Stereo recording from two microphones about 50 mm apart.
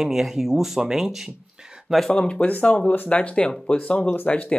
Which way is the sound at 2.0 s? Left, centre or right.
Centre.